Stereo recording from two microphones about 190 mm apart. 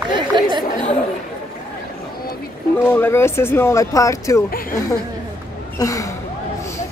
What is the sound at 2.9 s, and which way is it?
Speech, 10° left (ahead or behind).